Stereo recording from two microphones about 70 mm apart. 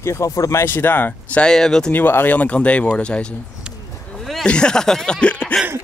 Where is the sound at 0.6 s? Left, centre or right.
Left.